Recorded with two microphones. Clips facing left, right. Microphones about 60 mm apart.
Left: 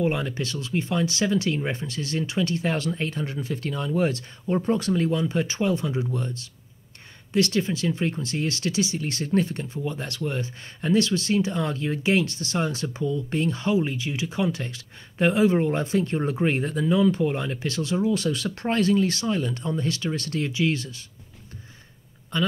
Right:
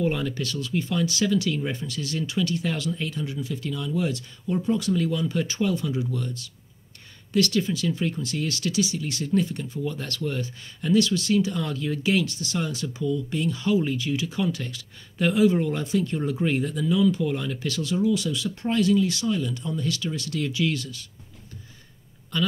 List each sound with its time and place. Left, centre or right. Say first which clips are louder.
0.0 s speech: left 1 dB; left
9.8 s speech: even; left
18.2 s speech: left 2 dB; left
20.4 s speech: left 1 dB; left